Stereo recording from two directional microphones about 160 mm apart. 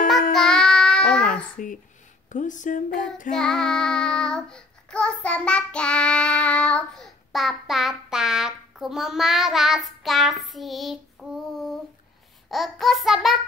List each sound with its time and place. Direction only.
0.3 s child singing: 5° left (ahead or behind)
1.3 s a sound: 55° left (ahead or behind)
2.2 s speech: 50° left (ahead or behind)
3.3 s child singing: 5° left (ahead or behind)
12.4 s child singing: centre (ahead or behind)